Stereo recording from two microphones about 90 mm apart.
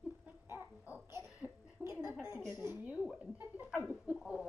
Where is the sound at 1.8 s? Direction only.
20° right (ahead or behind).